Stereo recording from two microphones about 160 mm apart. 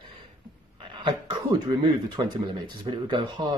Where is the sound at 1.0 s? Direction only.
30° right (ahead or behind).